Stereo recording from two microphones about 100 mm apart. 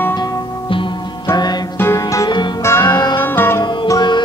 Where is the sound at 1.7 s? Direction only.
30° left (ahead or behind).